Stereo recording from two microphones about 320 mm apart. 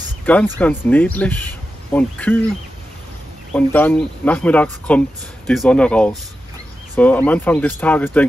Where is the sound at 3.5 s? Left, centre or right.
Centre.